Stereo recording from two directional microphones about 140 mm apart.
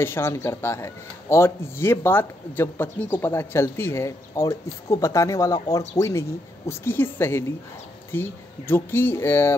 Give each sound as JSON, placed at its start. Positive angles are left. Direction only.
{"t": 0.0, "sound": "a man's voice", "side_deg": 15}